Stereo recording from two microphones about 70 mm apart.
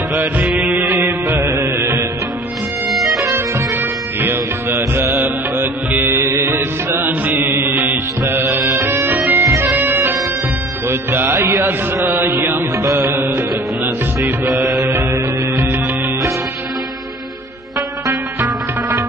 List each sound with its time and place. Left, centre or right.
0.1 s music: right
2.9 s music: centre
3.3 s music: right
8.3 s music: right
8.9 s music: right
9.4 s music: right
9.8 s music: right
12.1 s mantra: right
12.7 s music: right
13.2 s music: right
18.4 s music: right